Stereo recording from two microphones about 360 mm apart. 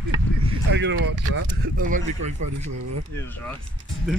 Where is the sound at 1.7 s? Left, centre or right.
Right.